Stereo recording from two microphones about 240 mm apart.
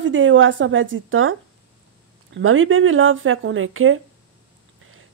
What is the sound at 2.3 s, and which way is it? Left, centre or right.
Speech, right.